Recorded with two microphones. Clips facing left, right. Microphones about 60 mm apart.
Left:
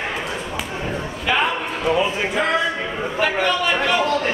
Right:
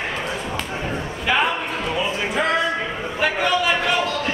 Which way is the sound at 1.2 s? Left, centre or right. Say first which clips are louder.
Even; centre.